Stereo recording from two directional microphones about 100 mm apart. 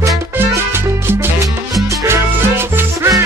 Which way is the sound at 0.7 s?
25° right (ahead or behind).